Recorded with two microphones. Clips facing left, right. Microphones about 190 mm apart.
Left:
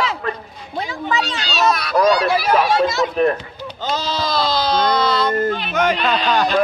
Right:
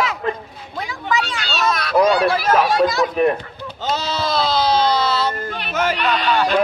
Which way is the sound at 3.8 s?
5° right (ahead or behind).